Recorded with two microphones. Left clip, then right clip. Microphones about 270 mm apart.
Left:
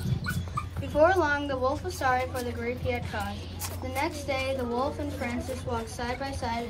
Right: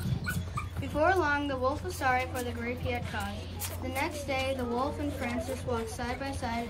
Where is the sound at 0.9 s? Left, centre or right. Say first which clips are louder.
Left 4 dB; centre.